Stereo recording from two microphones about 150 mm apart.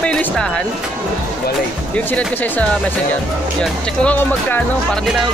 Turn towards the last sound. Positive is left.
turn(degrees=10)  # may be behind; listen again after turning